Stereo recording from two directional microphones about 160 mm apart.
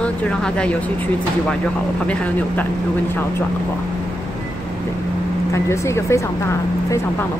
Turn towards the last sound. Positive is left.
turn(degrees=15)  # may be behind; listen again after turning